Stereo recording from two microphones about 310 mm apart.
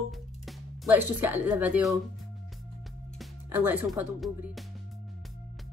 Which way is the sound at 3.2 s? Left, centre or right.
Centre.